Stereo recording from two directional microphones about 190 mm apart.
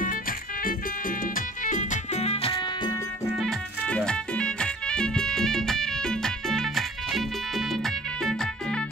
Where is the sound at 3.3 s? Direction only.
Centre (ahead or behind).